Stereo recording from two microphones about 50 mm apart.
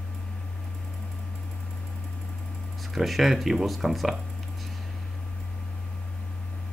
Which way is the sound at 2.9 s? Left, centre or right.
Centre.